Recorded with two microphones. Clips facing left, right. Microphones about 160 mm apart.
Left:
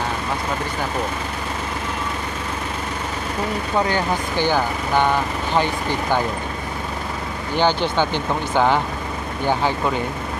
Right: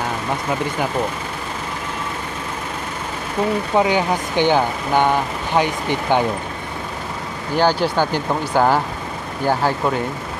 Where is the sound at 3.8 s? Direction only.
15° right (ahead or behind).